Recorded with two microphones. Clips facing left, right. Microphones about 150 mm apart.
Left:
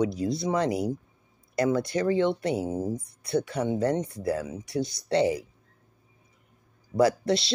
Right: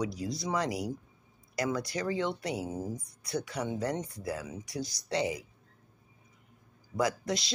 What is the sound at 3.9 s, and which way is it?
Speech, 60° left (ahead or behind).